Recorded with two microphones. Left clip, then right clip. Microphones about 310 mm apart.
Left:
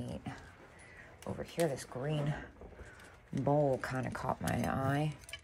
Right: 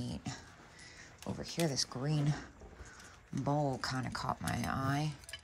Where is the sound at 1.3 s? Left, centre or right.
Centre.